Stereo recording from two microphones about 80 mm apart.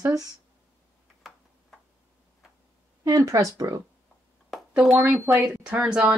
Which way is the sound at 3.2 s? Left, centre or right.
Right.